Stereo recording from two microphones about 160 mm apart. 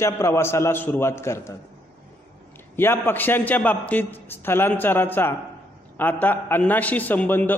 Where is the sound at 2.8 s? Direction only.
15° left (ahead or behind).